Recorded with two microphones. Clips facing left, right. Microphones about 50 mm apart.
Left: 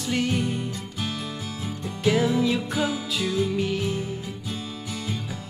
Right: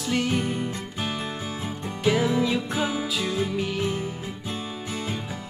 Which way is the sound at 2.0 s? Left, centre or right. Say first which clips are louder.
Left 1 dB; centre.